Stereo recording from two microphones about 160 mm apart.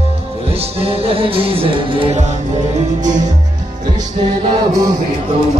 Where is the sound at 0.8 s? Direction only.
35° right (ahead or behind).